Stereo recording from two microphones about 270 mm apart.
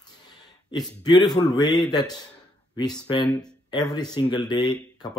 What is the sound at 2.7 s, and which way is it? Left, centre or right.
Speech, centre.